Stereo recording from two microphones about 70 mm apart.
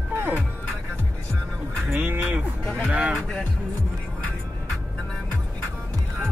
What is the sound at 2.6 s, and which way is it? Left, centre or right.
Music, centre.